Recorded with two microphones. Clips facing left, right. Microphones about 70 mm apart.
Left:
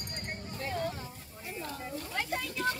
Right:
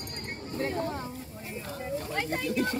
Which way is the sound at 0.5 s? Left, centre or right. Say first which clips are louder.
Right 5 dB; right.